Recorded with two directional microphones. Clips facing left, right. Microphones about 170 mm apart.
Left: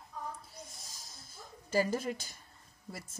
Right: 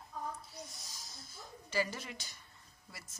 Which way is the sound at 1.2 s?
45° left (ahead or behind).